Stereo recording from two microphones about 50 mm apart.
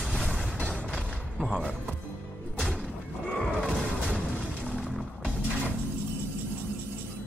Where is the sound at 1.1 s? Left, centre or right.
Right.